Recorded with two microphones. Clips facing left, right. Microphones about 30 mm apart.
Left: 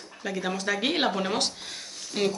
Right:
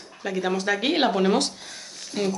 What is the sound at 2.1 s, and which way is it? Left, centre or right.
Speech, centre.